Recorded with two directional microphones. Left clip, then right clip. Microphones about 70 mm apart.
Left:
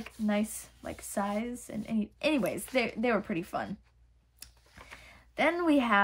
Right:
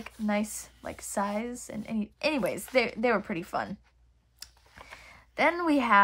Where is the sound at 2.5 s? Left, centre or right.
Right.